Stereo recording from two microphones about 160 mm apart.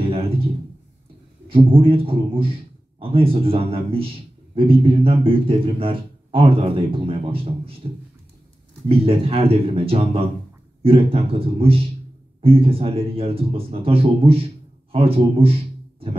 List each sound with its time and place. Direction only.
1.5 s speech: 35° right (ahead or behind)
8.8 s speech: 35° right (ahead or behind)